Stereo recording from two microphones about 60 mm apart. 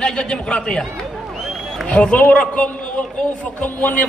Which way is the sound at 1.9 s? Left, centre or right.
Left.